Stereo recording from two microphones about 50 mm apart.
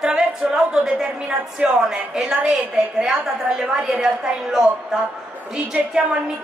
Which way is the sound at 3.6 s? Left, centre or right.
Centre.